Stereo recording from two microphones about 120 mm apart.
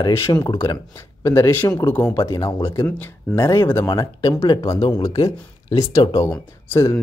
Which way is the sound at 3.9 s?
40° left (ahead or behind).